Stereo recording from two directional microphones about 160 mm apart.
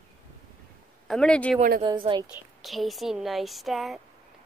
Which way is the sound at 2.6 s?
Centre (ahead or behind).